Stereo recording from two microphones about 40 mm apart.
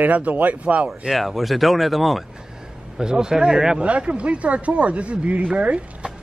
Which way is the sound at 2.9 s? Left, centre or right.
Centre.